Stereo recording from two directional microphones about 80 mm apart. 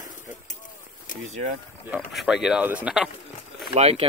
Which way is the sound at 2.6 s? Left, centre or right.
Centre.